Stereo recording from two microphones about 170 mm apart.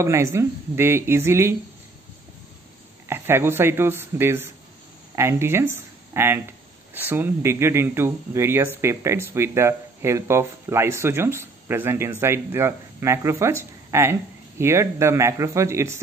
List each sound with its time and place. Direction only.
0.0 s speech: 15° right (ahead or behind)
3.1 s speech: 15° right (ahead or behind)